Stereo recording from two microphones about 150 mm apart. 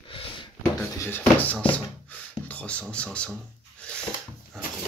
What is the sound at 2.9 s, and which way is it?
Speech, 5° left (ahead or behind).